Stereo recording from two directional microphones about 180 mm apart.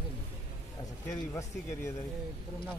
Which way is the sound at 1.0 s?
15° left (ahead or behind).